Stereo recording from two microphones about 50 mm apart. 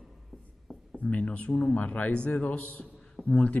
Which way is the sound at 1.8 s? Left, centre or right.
Left.